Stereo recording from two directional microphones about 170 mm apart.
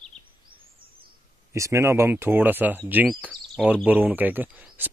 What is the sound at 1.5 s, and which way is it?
Speech, 15° right (ahead or behind).